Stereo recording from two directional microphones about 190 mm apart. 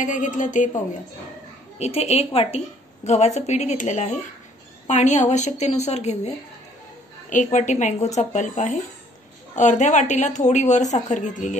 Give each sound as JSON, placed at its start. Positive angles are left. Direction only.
{"t": 0.0, "sound": "a woman's voice", "side_deg": 40}
{"t": 1.8, "sound": "a woman's voice", "side_deg": 35}